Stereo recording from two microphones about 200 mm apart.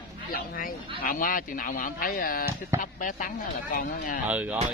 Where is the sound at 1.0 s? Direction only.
45° left (ahead or behind).